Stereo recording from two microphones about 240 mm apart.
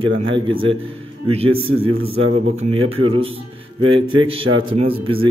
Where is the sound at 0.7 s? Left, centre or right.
Right.